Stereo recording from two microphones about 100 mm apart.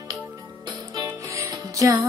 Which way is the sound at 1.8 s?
35° right (ahead or behind).